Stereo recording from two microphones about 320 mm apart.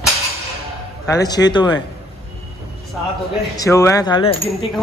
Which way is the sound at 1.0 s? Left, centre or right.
Centre.